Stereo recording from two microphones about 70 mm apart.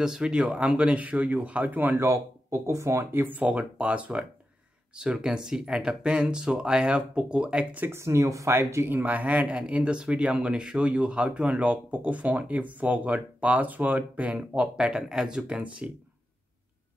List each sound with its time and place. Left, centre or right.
0.0 s speech: centre
2.0 s speech: right; by 7.8 s centre
7.8 s speech: right; by 14.7 s centre
14.8 s speech: centre